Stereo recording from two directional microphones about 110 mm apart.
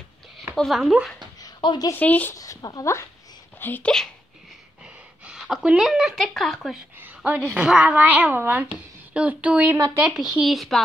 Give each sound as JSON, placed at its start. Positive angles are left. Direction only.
{"t": 0.6, "sound": "speech", "side_deg": 0}
{"t": 1.6, "sound": "a woman's voice", "side_deg": 45}
{"t": 2.0, "sound": "speech", "side_deg": 15}
{"t": 2.3, "sound": "speech", "side_deg": 30}
{"t": 3.5, "sound": "speech", "side_deg": 15}
{"t": 5.2, "sound": "speech", "side_deg": -5}
{"t": 7.0, "sound": "a woman's voice", "side_deg": -10}